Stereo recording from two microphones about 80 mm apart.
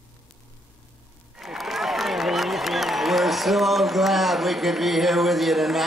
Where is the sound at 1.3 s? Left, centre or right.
Centre.